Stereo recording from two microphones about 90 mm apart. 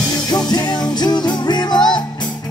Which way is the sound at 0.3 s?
45° left (ahead or behind).